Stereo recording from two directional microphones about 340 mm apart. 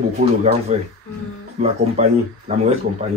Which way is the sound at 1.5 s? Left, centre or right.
Centre.